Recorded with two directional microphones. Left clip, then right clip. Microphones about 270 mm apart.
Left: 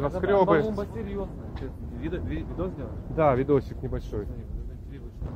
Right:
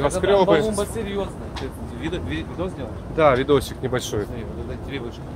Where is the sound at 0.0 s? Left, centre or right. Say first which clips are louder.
Right 5 dB; centre.